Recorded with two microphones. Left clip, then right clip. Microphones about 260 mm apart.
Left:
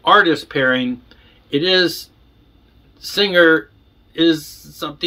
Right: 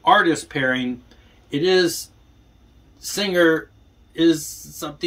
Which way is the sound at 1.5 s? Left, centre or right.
Left.